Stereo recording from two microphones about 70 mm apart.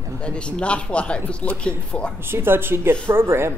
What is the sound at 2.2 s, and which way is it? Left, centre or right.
Speech, right.